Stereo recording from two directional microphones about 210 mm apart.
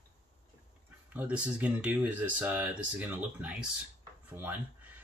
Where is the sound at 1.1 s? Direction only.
5° right (ahead or behind).